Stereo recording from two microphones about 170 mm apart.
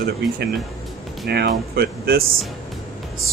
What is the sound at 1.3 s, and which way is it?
Speech, 70° right (ahead or behind).